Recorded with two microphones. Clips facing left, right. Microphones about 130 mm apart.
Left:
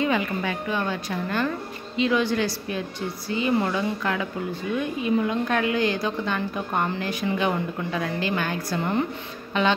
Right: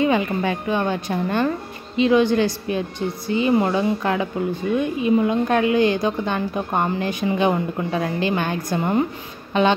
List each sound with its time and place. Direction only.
0.0 s a woman's voice: 25° right (ahead or behind)